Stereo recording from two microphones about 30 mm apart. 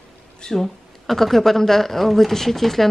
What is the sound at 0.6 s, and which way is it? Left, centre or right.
Speech, centre.